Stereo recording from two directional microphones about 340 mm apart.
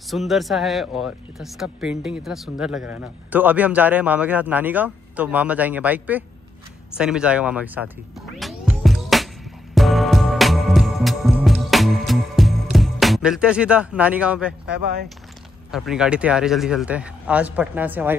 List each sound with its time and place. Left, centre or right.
0.1 s speech: centre
8.4 s music: centre
15.7 s speech: centre